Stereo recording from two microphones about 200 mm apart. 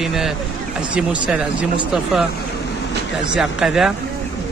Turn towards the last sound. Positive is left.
turn(degrees=0)  # may be behind; listen again after turning